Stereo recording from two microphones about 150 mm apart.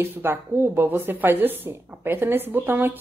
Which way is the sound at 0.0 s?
15° right (ahead or behind).